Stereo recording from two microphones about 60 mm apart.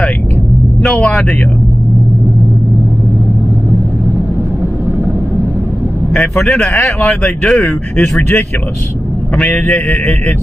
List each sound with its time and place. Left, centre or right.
0.8 s speech: centre
6.1 s speech: centre
7.6 s speech: left
9.4 s speech: left